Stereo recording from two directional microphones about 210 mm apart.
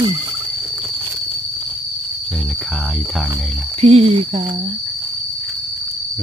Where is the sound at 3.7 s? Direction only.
30° right (ahead or behind).